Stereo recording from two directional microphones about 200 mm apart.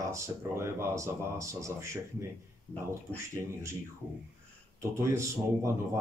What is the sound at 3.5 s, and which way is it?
Speech, 15° right (ahead or behind).